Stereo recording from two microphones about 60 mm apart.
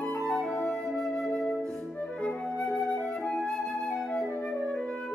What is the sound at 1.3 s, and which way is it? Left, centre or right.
Music, centre.